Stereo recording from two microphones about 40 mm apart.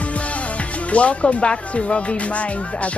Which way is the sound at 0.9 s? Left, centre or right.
Left.